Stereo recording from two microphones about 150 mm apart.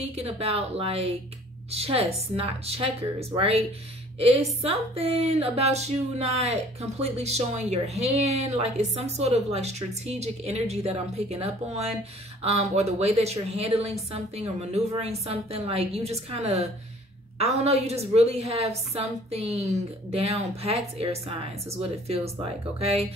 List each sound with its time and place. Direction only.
0.0 s a woman's voice: 40° right (ahead or behind)